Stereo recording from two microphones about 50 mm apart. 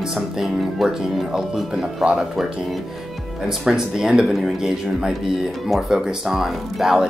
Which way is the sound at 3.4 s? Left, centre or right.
Centre.